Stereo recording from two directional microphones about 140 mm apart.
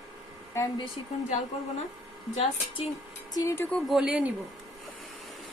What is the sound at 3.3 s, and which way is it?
Speech, 25° left (ahead or behind).